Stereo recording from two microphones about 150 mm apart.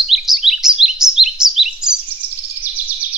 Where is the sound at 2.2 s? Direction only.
40° right (ahead or behind).